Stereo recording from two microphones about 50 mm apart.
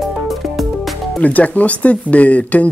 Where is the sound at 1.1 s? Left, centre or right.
Left.